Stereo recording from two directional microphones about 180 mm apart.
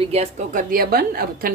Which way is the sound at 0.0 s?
35° right (ahead or behind).